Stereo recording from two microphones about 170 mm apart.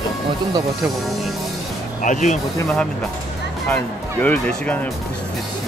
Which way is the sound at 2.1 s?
45° left (ahead or behind).